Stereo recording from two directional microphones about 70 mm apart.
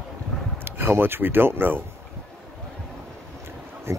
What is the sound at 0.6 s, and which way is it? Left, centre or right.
Speech, right.